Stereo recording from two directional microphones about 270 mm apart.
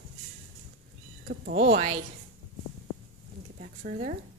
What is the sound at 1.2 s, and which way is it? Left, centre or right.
Speech, right.